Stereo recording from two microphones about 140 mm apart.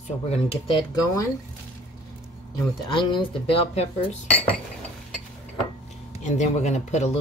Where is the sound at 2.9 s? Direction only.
40° left (ahead or behind).